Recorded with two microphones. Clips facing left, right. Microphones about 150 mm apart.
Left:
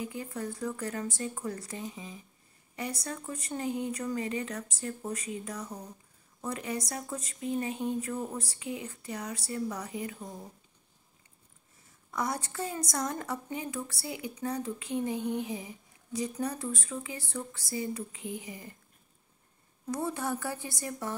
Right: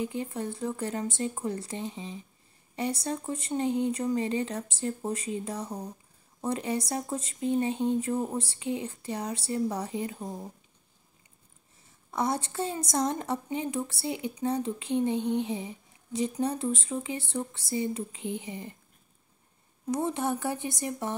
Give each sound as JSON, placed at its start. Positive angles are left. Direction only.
{"t": 0.0, "sound": "a woman's voice", "side_deg": -25}
{"t": 12.1, "sound": "a woman's voice", "side_deg": -25}
{"t": 19.9, "sound": "a woman's voice", "side_deg": -20}